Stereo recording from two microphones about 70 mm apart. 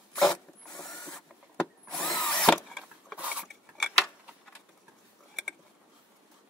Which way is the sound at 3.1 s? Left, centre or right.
Right.